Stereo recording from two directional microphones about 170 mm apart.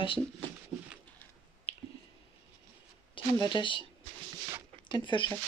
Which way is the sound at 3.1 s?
25° left (ahead or behind).